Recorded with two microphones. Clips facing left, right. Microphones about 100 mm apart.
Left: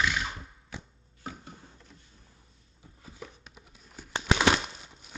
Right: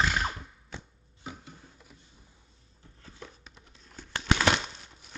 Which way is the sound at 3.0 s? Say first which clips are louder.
Left 2 dB; 5° left (ahead or behind).